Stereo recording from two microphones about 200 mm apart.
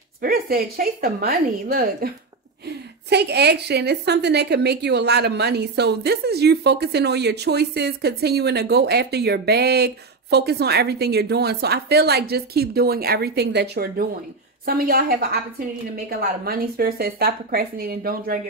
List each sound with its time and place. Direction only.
0.2 s a woman's voice: 50° right (ahead or behind)